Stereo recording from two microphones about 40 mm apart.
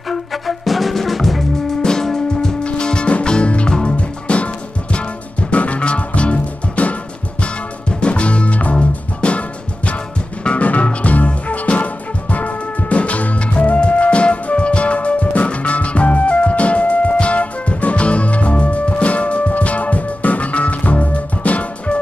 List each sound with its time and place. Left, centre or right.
0.1 s music: centre
1.8 s music: centre
5.5 s music: left
8.0 s music: left
9.2 s music: left
10.4 s music: left